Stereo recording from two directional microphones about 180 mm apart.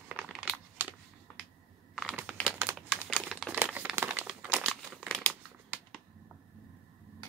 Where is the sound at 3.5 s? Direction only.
10° right (ahead or behind).